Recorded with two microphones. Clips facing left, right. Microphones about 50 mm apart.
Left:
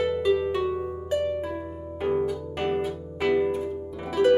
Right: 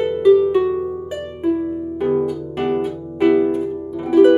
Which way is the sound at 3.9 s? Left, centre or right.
Centre.